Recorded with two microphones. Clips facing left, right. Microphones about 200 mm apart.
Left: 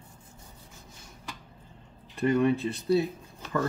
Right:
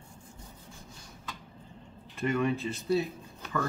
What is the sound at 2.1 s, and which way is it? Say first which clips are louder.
Speech: left 5 dB; 35° left (ahead or behind).